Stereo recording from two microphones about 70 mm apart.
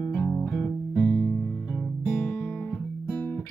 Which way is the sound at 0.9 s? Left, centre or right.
Left.